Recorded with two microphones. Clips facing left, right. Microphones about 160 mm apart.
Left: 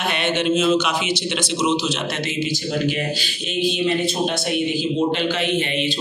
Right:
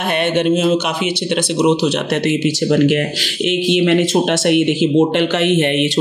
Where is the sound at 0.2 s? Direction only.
50° right (ahead or behind).